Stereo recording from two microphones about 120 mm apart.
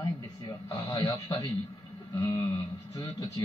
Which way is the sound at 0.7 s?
30° left (ahead or behind).